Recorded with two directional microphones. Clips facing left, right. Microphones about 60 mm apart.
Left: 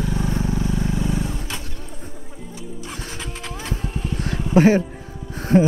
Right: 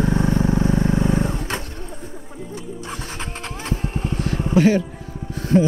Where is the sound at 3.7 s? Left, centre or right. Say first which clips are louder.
Right 3 dB; right.